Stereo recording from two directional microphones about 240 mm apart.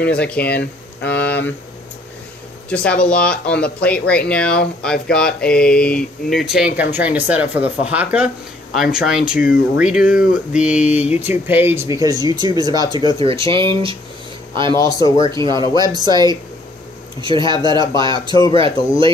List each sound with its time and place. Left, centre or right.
0.0 s speech: centre
2.7 s speech: centre; by 13.9 s right
15.1 s speech: centre